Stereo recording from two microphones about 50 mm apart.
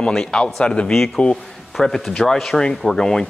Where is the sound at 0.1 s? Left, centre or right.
Centre.